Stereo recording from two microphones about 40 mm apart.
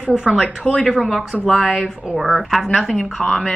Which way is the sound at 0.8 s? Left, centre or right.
Centre.